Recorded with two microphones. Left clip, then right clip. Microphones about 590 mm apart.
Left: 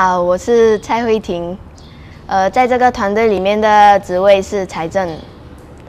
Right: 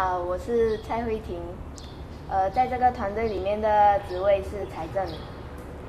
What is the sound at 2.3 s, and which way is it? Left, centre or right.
A woman's voice, left.